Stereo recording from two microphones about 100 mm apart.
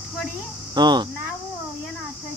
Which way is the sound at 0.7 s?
45° right (ahead or behind).